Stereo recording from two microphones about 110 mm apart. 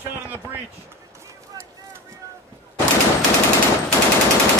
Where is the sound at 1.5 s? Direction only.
30° right (ahead or behind).